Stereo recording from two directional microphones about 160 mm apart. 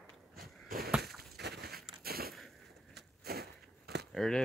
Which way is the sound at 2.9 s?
85° right.